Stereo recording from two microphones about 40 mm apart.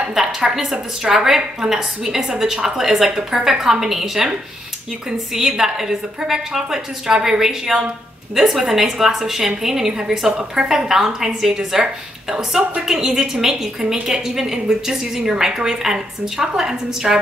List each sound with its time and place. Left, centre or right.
0.1 s a woman's voice: centre
10.3 s a woman's voice: right
10.7 s a woman's voice: centre